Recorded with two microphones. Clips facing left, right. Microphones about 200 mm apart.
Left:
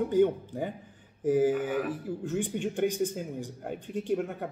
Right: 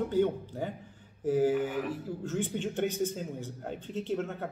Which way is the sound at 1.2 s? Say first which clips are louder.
Left 2 dB; 15° left (ahead or behind).